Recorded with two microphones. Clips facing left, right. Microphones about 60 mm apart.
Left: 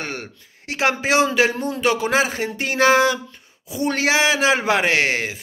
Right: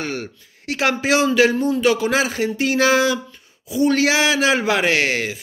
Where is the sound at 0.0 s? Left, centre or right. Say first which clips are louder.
Right 3 dB; left.